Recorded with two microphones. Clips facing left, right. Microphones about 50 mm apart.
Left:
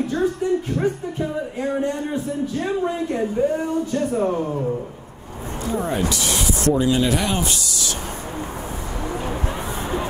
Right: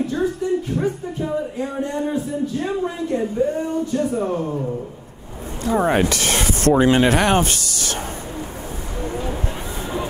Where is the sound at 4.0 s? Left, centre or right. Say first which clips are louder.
Left 1 dB; centre.